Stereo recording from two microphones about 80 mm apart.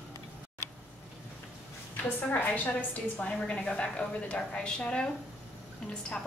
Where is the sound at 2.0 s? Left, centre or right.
Left.